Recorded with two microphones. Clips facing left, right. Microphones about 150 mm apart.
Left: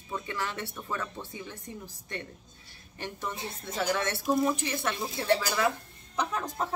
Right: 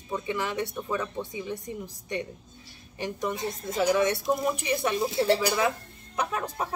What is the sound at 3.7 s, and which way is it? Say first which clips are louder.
Speech: right 6 dB; 10° right (ahead or behind).